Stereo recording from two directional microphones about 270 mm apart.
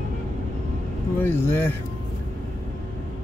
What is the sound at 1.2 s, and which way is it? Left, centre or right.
Speech, centre.